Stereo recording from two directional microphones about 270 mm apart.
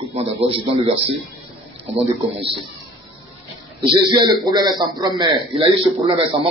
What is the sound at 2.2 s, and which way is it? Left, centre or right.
Speech, right.